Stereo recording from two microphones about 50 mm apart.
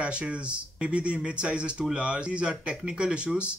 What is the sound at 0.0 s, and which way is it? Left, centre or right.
Speech, right.